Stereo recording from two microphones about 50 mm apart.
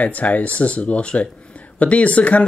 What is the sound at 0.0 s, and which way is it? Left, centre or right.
Speech, left.